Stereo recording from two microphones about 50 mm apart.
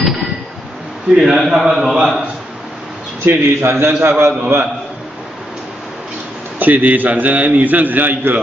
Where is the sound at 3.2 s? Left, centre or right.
Right.